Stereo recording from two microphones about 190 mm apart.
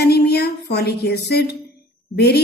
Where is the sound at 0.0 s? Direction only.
55° left (ahead or behind).